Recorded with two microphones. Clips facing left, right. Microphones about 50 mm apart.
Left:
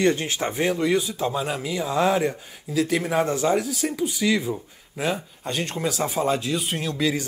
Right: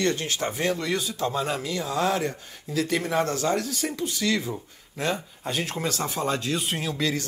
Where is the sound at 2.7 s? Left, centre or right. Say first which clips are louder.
Left 3 dB; centre.